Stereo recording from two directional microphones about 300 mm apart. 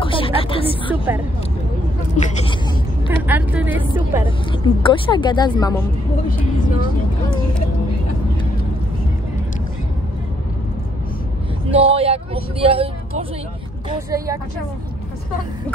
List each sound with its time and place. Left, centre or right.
0.0 s a sound: centre
2.1 s speech: left
3.2 s a woman's voice: centre
4.5 s speech: centre
11.7 s speech: centre
14.1 s speech: centre